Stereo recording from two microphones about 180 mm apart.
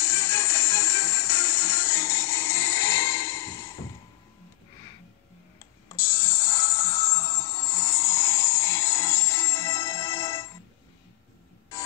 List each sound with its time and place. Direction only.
0.0 s music: 15° left (ahead or behind)
5.9 s music: 15° left (ahead or behind)